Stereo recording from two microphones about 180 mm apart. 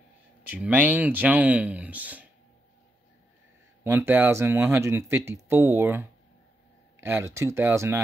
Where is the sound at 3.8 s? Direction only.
15° right (ahead or behind).